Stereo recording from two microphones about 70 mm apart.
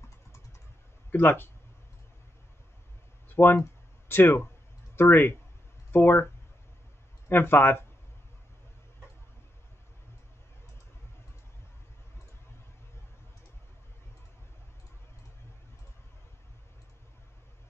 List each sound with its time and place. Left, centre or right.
1.1 s speech: left
3.3 s speech: left
7.2 s speech: left